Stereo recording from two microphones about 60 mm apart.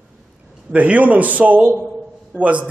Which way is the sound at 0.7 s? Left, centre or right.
Right.